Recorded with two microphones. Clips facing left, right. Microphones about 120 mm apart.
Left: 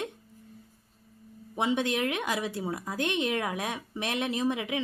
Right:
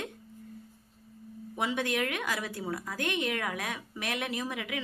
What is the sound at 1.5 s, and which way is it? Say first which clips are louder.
A woman's voice: left 3 dB; 25° left (ahead or behind).